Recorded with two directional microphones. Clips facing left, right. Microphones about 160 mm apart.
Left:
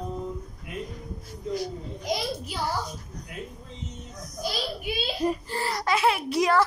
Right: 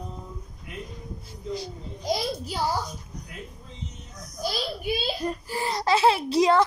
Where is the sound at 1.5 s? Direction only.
35° right (ahead or behind).